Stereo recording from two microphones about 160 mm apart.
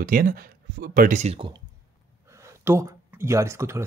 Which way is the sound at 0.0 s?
60° right (ahead or behind).